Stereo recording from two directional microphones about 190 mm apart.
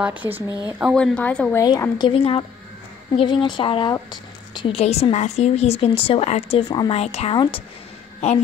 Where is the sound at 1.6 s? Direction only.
20° left (ahead or behind).